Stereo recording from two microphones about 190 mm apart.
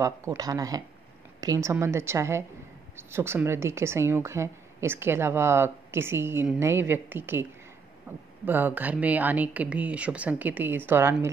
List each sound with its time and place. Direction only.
0.0 s speech: 15° right (ahead or behind)